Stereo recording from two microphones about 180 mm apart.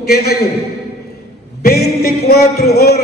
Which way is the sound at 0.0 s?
60° left (ahead or behind).